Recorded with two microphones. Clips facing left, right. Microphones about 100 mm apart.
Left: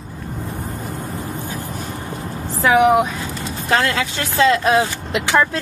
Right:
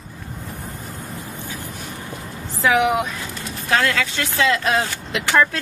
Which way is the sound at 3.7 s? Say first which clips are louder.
Left 1 dB; 25° left (ahead or behind).